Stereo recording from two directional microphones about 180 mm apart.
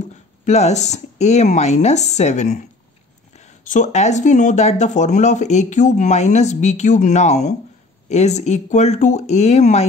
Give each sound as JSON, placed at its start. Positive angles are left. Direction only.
{"t": 0.1, "sound": "speech", "side_deg": 40}